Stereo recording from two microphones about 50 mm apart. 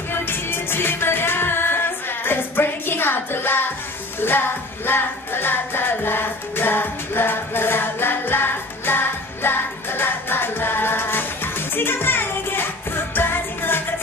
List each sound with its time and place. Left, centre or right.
0.1 s music: left